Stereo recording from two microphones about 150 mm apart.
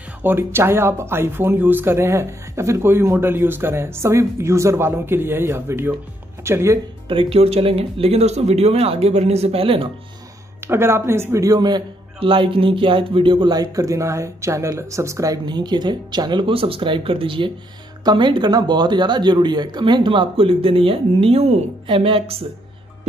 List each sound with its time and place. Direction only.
0.2 s speech: 15° right (ahead or behind)
7.1 s speech: 40° right (ahead or behind)
10.6 s a man's voice: 15° right (ahead or behind); by 22.4 s 40° right (ahead or behind)